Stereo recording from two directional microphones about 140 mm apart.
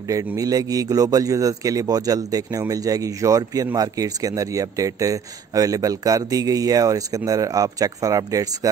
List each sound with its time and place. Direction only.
0.4 s speech: 25° right (ahead or behind)